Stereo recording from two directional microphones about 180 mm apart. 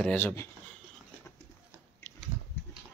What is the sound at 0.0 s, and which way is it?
Speech, 10° left (ahead or behind).